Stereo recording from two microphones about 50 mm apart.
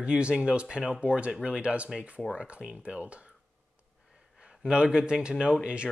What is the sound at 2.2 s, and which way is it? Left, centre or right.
Speech, centre.